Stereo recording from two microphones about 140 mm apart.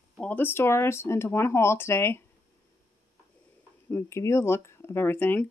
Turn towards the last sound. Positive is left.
turn(degrees=15)  # may be behind; listen again after turning